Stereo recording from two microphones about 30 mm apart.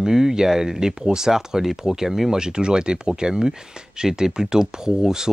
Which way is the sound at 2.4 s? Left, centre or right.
Right.